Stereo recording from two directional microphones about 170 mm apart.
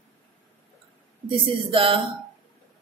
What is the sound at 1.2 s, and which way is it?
Speech, 30° right (ahead or behind).